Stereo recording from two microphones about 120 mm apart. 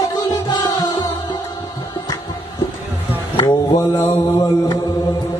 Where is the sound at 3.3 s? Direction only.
40° left (ahead or behind).